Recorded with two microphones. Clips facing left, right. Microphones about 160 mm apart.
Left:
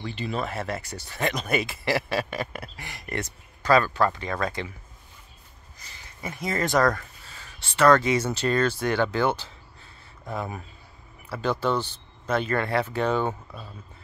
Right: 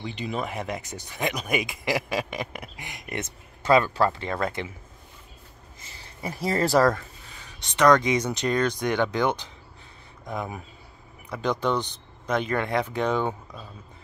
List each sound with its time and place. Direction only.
0.0 s speech: 15° right (ahead or behind)
5.8 s speech: 25° right (ahead or behind)
7.0 s speech: 15° right (ahead or behind)
13.3 s speech: 5° left (ahead or behind)